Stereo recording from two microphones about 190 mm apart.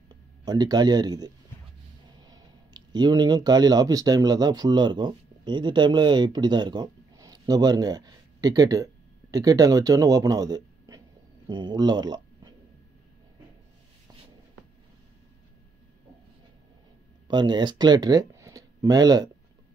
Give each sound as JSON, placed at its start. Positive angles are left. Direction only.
{"t": 0.5, "sound": "speech", "side_deg": -20}
{"t": 17.3, "sound": "speech", "side_deg": -25}